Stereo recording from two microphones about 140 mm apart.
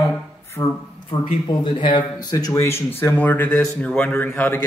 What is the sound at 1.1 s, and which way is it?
Speech, 35° left (ahead or behind).